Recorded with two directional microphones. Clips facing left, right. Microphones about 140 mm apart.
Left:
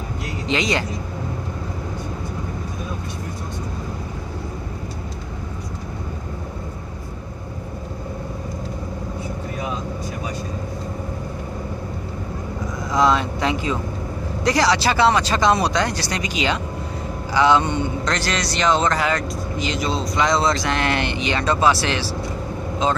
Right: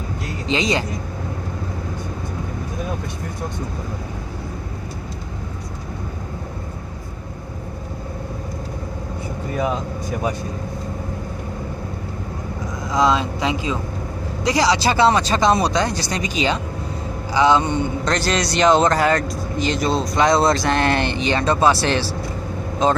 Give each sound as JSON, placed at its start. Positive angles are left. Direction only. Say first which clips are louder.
{"t": 0.5, "sound": "speech", "louder": "right 1 dB", "side_deg": -25}
{"t": 12.9, "sound": "speech", "louder": "even", "side_deg": -15}
{"t": 18.1, "sound": "speech", "louder": "right 3 dB", "side_deg": -40}